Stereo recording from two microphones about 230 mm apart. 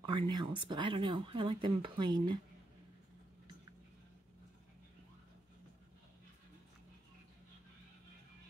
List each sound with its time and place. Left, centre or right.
0.0 s speech: centre